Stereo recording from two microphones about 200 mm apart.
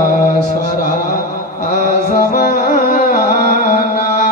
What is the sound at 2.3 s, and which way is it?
Music, 45° left (ahead or behind).